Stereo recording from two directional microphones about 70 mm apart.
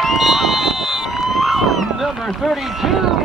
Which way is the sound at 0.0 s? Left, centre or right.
Centre.